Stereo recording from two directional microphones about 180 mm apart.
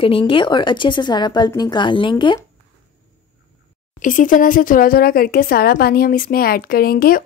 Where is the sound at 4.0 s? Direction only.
45° left (ahead or behind).